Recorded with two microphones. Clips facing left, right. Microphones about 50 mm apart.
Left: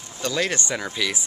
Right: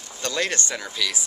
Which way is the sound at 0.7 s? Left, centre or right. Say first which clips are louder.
Left 2 dB; centre.